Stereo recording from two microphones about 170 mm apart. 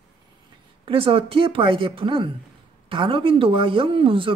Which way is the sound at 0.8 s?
35° right (ahead or behind).